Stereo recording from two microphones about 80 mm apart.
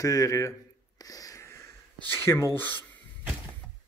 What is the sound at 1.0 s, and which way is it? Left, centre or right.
Wheeze, left.